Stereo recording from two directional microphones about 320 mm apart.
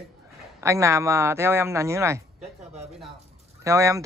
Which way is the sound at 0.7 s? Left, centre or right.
Centre.